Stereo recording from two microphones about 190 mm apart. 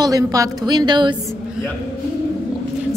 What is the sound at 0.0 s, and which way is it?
A woman's voice, 20° right (ahead or behind).